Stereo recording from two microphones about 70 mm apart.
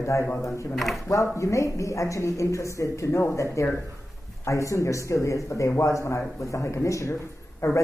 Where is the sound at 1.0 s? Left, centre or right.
Left.